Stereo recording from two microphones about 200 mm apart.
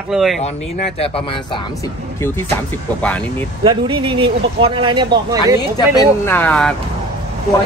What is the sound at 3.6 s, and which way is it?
Speech, 25° right (ahead or behind).